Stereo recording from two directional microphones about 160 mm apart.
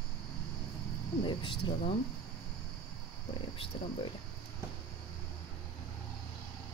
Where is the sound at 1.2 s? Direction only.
30° left (ahead or behind).